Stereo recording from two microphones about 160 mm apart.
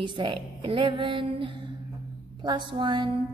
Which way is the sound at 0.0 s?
30° right (ahead or behind).